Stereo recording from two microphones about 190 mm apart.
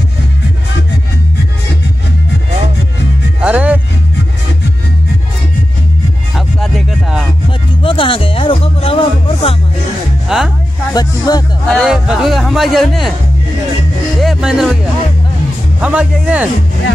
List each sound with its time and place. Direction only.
3.3 s music: 5° right (ahead or behind)
6.3 s music: centre (ahead or behind)
7.8 s music: 25° left (ahead or behind)
10.2 s music: centre (ahead or behind)
10.9 s music: 20° left (ahead or behind)
11.7 s music: 5° right (ahead or behind)
14.2 s music: centre (ahead or behind)
15.8 s speech: 5° right (ahead or behind)